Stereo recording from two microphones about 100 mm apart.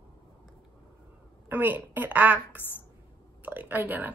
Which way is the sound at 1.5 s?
20° right (ahead or behind).